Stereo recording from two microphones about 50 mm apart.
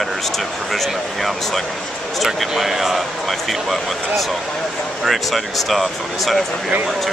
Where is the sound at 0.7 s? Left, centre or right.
Centre.